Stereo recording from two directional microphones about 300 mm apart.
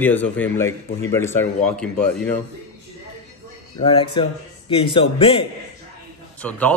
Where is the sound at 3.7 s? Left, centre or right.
Centre.